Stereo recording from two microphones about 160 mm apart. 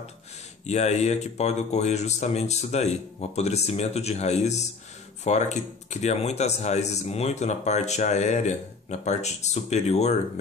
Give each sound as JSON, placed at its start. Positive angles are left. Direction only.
{"t": 0.7, "sound": "speech", "side_deg": 45}